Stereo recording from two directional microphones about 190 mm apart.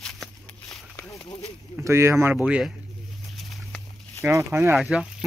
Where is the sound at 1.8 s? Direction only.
15° right (ahead or behind).